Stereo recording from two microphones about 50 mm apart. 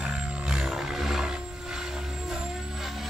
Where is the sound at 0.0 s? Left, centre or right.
Centre.